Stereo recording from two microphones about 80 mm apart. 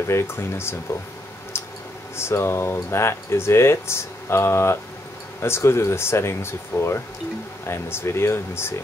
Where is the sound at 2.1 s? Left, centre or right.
Left.